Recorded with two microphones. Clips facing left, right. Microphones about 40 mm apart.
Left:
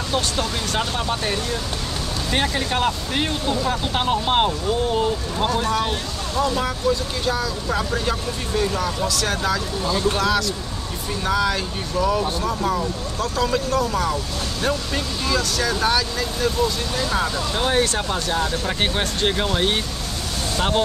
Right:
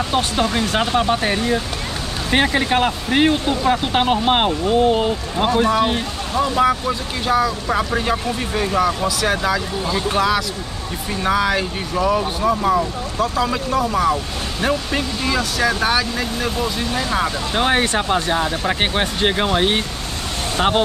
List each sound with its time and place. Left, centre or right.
0.1 s speech: right